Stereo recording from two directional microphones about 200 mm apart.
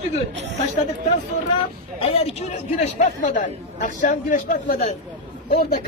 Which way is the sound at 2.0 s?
30° left (ahead or behind).